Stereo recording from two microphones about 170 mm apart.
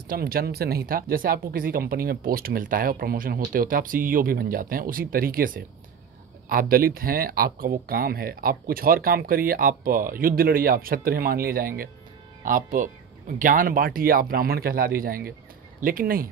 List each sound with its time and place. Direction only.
0.1 s speech: 60° right (ahead or behind)